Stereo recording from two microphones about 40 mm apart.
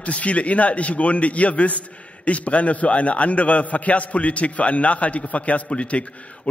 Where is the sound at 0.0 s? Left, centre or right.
Left.